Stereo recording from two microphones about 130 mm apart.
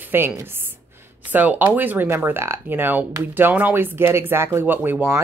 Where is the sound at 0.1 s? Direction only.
15° right (ahead or behind).